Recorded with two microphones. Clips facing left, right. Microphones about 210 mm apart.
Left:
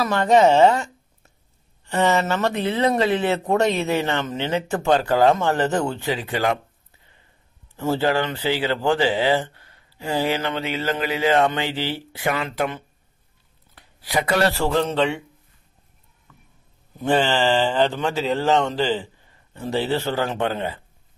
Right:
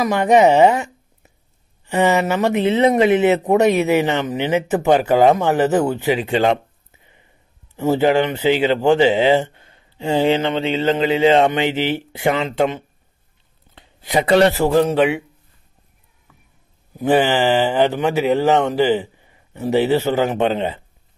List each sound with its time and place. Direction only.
0.0 s speech: 15° right (ahead or behind)
16.3 s a sound: 10° right (ahead or behind)
16.9 s speech: 15° right (ahead or behind)